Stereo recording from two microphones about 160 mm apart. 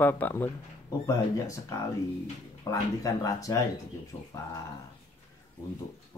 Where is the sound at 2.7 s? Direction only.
20° left (ahead or behind).